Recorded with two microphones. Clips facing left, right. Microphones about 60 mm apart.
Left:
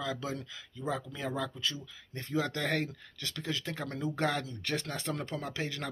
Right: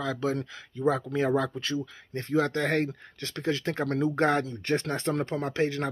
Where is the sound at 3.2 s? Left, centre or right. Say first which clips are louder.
Right 8 dB; right.